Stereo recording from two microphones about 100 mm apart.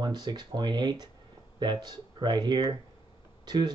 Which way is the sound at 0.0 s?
45° right (ahead or behind).